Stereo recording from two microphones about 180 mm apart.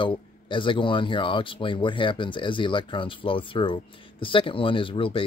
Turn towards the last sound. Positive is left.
turn(degrees=30)  # may be behind; listen again after turning